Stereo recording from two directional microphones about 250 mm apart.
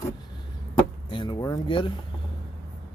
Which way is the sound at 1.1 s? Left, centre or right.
Centre.